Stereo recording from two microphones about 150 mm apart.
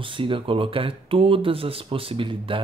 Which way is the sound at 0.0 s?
35° right (ahead or behind).